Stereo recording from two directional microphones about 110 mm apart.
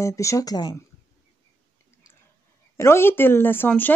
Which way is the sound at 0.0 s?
30° left (ahead or behind).